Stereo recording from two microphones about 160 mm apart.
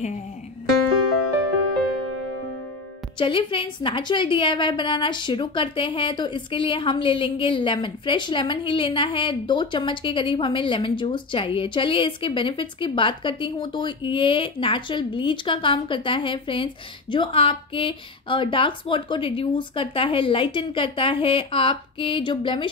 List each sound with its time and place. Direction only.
3.2 s a woman's voice: 30° left (ahead or behind)